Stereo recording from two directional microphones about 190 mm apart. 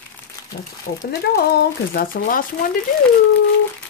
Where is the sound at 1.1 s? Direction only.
55° left (ahead or behind).